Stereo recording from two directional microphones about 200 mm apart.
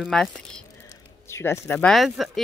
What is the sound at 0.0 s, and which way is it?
Speech, centre (ahead or behind).